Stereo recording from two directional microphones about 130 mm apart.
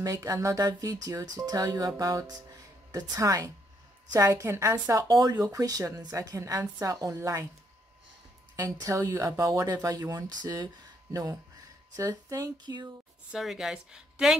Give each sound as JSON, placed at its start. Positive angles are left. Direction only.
{"t": 0.0, "sound": "speech", "side_deg": -25}
{"t": 8.5, "sound": "speech", "side_deg": -25}
{"t": 13.3, "sound": "a woman's voice", "side_deg": -5}